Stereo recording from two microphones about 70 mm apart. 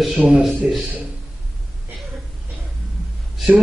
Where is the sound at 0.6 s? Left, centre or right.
Centre.